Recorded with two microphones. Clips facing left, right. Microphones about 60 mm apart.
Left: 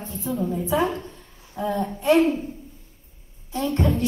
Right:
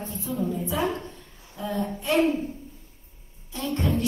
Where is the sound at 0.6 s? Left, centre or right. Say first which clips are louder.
Left 4 dB; left.